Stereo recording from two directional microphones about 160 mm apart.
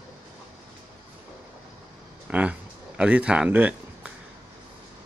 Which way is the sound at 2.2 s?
10° right (ahead or behind).